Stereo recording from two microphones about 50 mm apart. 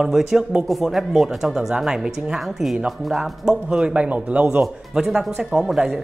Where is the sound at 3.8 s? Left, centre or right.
Right.